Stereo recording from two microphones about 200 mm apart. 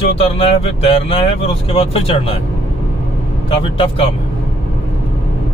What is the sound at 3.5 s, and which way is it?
Speech, 25° left (ahead or behind).